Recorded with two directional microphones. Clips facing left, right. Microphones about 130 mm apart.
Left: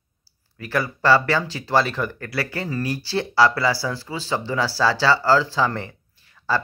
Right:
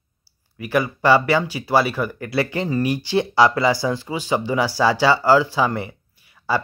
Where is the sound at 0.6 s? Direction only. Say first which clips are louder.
Right 4 dB; 15° right (ahead or behind).